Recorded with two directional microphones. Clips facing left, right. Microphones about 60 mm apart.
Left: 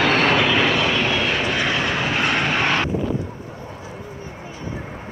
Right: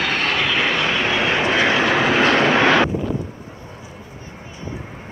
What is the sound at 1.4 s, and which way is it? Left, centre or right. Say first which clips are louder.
Vehicle: right 4 dB; right.